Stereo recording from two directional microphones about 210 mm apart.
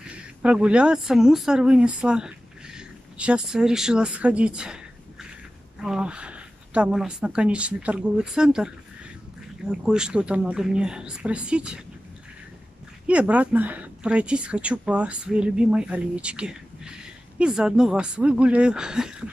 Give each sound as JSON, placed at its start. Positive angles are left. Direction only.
{"t": 0.1, "sound": "speech", "side_deg": -5}
{"t": 13.0, "sound": "speech", "side_deg": -5}